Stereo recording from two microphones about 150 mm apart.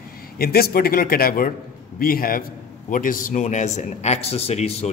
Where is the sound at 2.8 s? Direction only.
65° left (ahead or behind).